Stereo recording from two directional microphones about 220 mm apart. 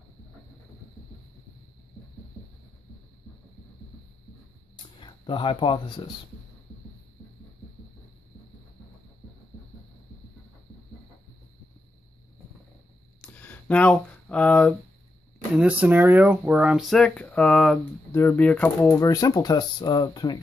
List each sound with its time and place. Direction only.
5.0 s speech: 20° left (ahead or behind)
13.2 s a sound: 5° left (ahead or behind)
15.5 s speech: 5° right (ahead or behind); by 20.3 s 20° left (ahead or behind)